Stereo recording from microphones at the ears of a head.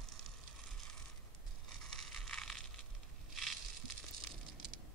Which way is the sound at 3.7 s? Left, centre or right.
Right.